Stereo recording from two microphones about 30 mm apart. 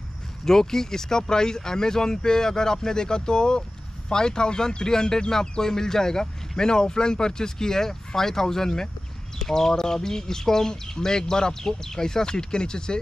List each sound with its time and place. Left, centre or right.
0.5 s speech: centre